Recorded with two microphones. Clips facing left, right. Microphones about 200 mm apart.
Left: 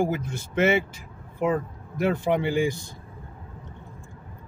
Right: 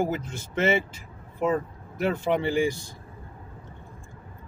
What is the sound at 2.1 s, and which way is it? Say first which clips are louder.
Speech: right 1 dB; 15° left (ahead or behind).